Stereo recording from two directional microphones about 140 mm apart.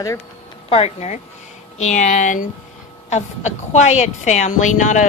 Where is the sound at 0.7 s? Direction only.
50° left (ahead or behind).